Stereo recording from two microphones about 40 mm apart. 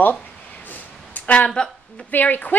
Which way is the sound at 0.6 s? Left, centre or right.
Left.